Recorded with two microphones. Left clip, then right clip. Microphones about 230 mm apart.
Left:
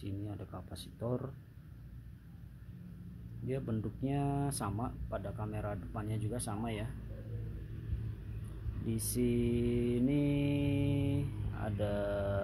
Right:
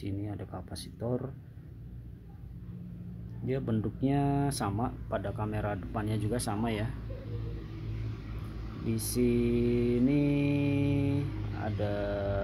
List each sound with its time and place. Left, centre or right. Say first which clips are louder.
0.0 s speech: right 6 dB; centre
3.4 s speech: right 6 dB; centre
8.8 s mantra: right 5 dB; centre